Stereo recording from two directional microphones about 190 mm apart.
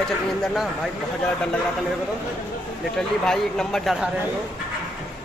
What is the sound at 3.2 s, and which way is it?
Speech, 5° left (ahead or behind).